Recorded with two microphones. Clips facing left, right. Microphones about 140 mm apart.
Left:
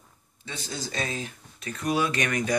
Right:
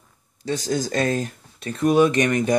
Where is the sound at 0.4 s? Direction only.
40° right (ahead or behind).